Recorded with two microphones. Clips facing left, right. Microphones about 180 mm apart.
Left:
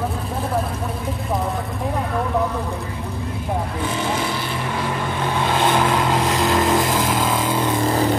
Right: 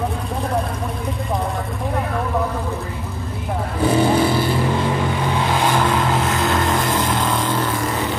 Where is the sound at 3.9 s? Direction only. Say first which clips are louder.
Right 10 dB; 35° right (ahead or behind).